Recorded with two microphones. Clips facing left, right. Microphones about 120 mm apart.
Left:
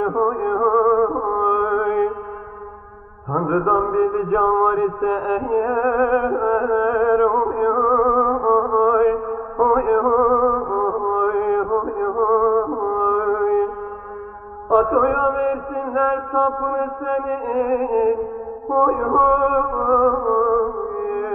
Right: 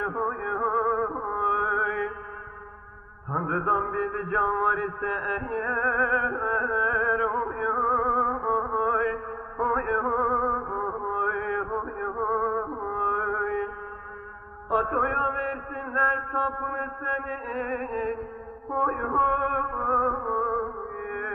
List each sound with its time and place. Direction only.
0.0 s music: 45° left (ahead or behind)
3.3 s mantra: 45° left (ahead or behind)
14.7 s a sound: 45° left (ahead or behind)
18.7 s music: 45° left (ahead or behind)